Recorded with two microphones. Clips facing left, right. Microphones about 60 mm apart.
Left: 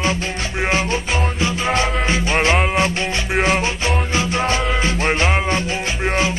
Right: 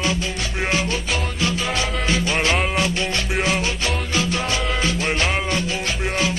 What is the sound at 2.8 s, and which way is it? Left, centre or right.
Music, left.